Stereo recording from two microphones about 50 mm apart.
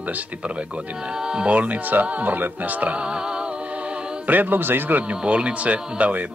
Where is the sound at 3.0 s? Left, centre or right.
Centre.